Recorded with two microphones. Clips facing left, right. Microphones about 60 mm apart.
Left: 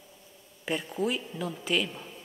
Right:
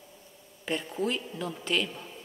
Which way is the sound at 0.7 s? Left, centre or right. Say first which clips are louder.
Left 1 dB; centre.